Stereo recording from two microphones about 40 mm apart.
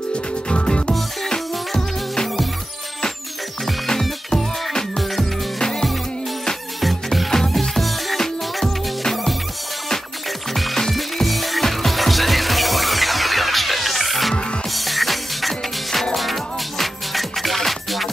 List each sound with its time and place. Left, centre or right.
0.1 s music: left
3.6 s music: centre
6.8 s music: centre
10.5 s music: centre